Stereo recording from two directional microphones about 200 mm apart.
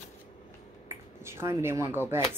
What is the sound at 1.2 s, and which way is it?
Speech, 15° right (ahead or behind).